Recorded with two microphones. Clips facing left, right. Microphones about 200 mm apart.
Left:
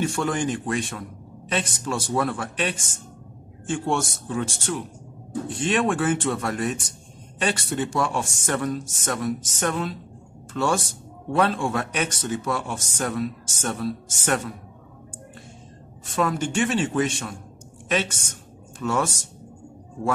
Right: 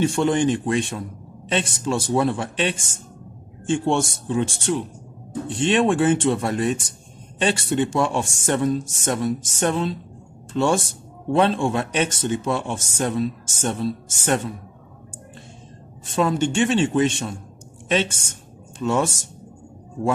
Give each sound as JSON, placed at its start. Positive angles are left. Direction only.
{"t": 0.0, "sound": "a man's voice", "side_deg": -25}
{"t": 16.2, "sound": "a man's voice", "side_deg": -25}
{"t": 18.8, "sound": "a man's voice", "side_deg": -25}